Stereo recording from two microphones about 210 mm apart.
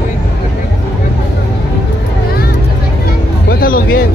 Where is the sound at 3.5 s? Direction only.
45° left (ahead or behind).